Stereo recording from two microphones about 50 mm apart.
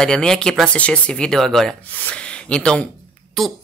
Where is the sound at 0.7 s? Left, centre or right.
Left.